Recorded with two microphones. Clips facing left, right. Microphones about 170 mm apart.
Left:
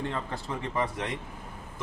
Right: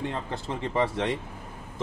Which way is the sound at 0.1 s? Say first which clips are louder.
Right 1 dB; 25° right (ahead or behind).